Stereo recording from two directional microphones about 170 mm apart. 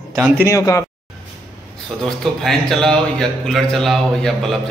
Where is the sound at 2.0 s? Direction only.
Centre (ahead or behind).